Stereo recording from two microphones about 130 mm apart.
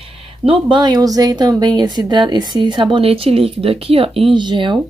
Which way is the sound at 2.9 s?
45° right (ahead or behind).